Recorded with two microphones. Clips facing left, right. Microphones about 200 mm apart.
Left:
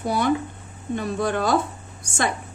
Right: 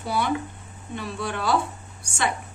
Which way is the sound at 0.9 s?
45° left (ahead or behind).